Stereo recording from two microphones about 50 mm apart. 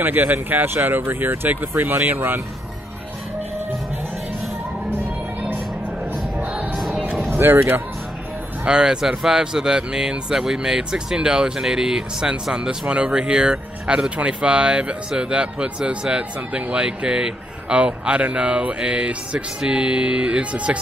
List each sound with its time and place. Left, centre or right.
0.0 s speech: right
6.7 s music: centre
7.2 s speech: right
8.6 s speech: centre